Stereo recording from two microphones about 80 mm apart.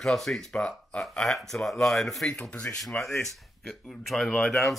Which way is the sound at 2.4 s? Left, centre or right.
Centre.